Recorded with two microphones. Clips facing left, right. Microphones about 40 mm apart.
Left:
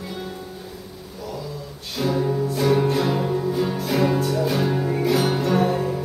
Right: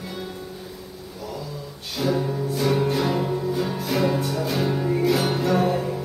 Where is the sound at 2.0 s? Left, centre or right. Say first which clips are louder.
Left 2 dB; centre.